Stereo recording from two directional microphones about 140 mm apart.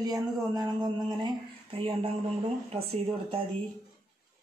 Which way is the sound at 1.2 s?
40° right (ahead or behind).